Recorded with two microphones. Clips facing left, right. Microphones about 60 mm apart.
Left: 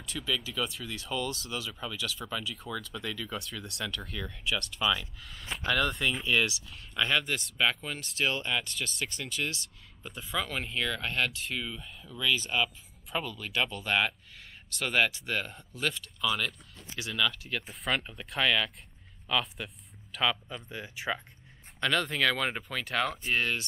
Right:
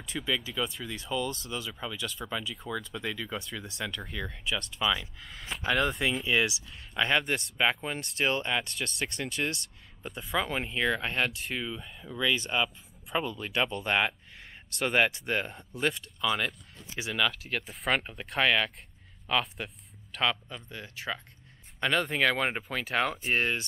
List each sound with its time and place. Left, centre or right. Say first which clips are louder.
0.0 s speech: right 2 dB; right
5.3 s speech: even; centre
5.6 s speech: right 1 dB; centre
17.1 s speech: right 2 dB; centre
20.6 s speech: left 2 dB; centre
21.7 s speech: right 1 dB; centre
23.2 s speech: right 1 dB; right